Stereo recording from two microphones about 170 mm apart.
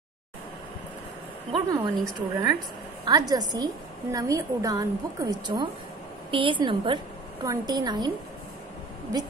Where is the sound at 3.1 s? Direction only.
20° right (ahead or behind).